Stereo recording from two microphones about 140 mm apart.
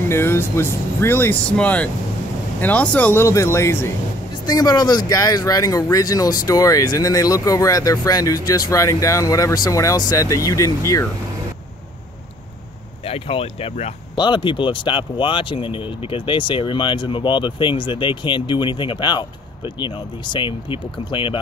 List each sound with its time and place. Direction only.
0.1 s speech: 15° left (ahead or behind)
13.0 s speech: 45° left (ahead or behind)
14.1 s speech: 35° left (ahead or behind)